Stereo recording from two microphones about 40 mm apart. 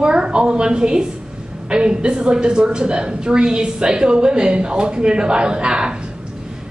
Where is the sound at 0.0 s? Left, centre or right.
Right.